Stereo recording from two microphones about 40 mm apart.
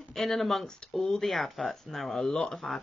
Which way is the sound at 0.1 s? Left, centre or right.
Centre.